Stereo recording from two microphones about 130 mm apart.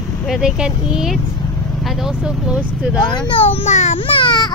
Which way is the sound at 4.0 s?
40° left (ahead or behind).